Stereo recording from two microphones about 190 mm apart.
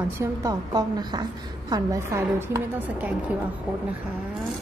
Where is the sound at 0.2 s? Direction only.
20° right (ahead or behind).